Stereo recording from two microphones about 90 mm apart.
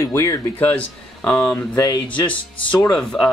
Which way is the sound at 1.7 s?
45° left (ahead or behind).